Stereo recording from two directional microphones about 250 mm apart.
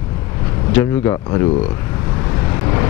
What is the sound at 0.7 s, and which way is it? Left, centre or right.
Speech, centre.